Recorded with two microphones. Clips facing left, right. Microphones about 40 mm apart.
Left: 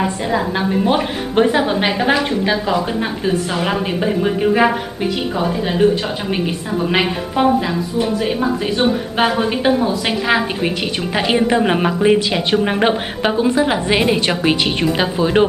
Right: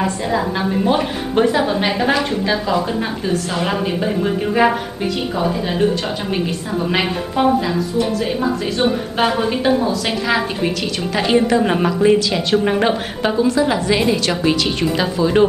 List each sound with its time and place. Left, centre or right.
0.0 s a woman's voice: centre
3.5 s a woman's voice: centre
6.9 s a woman's voice: centre